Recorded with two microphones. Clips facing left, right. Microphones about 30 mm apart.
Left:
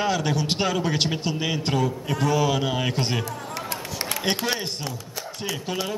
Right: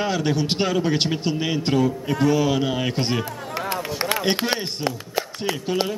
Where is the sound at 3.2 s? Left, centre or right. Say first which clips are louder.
Right 4 dB; right.